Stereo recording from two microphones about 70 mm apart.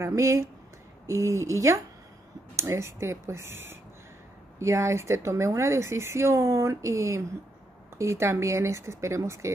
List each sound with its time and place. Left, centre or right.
0.0 s speech: right